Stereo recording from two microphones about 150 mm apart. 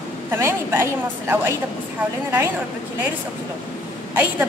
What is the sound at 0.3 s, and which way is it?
A woman's voice, 15° right (ahead or behind).